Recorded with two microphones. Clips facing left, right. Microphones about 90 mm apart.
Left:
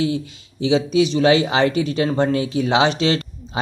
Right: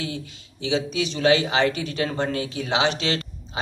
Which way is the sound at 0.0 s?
20° left (ahead or behind).